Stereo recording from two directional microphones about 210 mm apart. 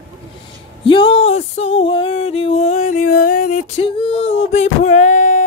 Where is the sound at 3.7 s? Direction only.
25° left (ahead or behind).